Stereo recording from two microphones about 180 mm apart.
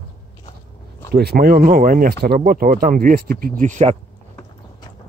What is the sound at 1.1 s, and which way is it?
Speech, 60° right (ahead or behind).